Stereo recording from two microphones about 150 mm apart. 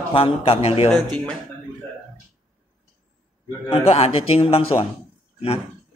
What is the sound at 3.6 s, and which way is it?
A man's voice, 40° left (ahead or behind).